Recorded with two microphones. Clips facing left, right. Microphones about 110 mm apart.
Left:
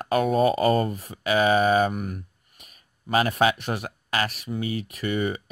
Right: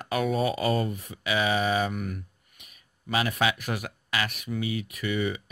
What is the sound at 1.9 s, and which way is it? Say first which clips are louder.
Speech: left 2 dB; 30° left (ahead or behind).